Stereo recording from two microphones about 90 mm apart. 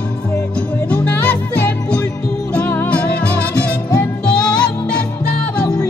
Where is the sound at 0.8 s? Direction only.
15° left (ahead or behind).